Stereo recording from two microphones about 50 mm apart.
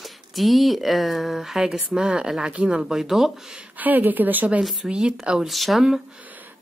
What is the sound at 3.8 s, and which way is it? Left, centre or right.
Speech, right.